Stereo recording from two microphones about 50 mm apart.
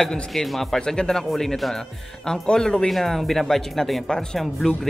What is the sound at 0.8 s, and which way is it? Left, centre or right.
A man's voice, centre.